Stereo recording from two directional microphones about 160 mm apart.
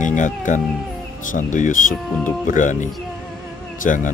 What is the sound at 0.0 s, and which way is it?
Speech, 50° left (ahead or behind).